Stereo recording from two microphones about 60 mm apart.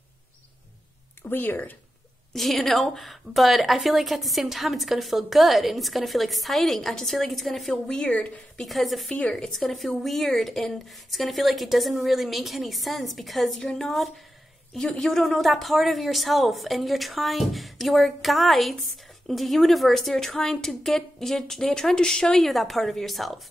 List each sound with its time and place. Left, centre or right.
1.3 s speech: left
2.3 s speech: centre